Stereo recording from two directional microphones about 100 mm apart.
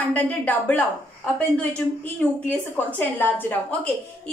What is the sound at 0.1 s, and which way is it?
Speech, 15° left (ahead or behind).